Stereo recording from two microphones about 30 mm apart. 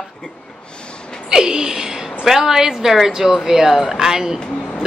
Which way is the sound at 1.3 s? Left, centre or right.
Right.